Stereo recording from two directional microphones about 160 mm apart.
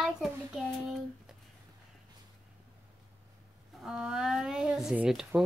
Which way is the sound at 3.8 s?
5° right (ahead or behind).